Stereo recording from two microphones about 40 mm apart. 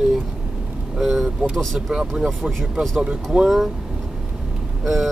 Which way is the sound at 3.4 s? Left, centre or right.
Centre.